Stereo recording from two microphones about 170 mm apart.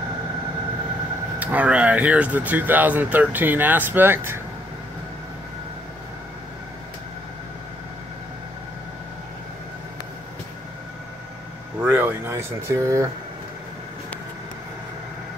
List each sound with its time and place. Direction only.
1.4 s speech: 10° right (ahead or behind)
11.8 s speech: 10° right (ahead or behind)